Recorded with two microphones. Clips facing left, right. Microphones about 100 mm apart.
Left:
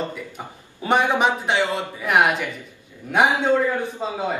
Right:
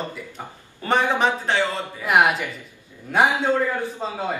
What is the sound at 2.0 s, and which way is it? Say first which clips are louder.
Speech: even; 5° right (ahead or behind).